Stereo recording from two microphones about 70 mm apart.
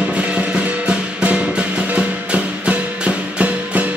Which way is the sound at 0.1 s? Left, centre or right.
Centre.